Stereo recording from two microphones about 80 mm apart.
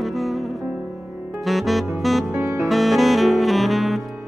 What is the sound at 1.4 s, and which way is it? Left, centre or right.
Saxophone, centre.